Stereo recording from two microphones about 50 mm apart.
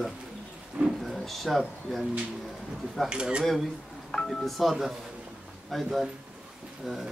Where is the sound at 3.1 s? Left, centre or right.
Centre.